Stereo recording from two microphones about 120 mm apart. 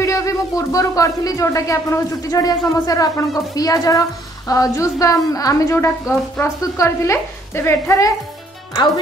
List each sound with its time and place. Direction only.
0.0 s a woman's voice: 25° left (ahead or behind)